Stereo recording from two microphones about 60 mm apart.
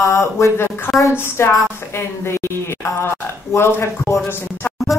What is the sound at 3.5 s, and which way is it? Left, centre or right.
Speech, left.